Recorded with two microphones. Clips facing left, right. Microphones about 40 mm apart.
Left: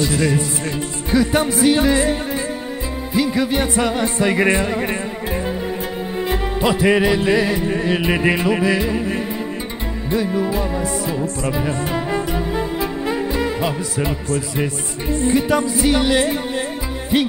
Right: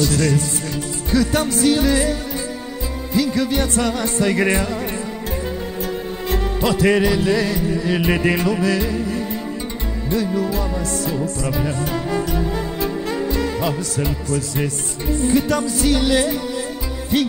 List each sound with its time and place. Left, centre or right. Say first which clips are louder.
0.0 s music: even; centre
3.1 s music: left 1 dB; centre
6.2 s music: left 1 dB; centre
8.0 s music: left 1 dB; centre
8.9 s music: left 1 dB; left
10.0 s music: left 1 dB; centre
15.0 s music: left 1 dB; left
15.3 s music: left 2 dB; centre
16.2 s music: left 1 dB; left
17.1 s music: left 1 dB; left